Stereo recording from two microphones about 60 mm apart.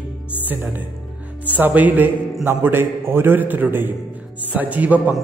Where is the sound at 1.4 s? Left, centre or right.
Right.